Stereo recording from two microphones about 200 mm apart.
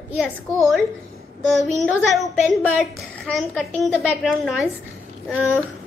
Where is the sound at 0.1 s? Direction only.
5° right (ahead or behind).